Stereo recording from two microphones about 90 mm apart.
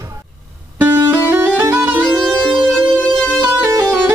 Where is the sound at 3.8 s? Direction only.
20° right (ahead or behind).